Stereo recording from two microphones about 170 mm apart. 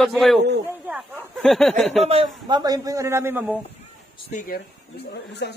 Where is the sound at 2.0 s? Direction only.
35° right (ahead or behind).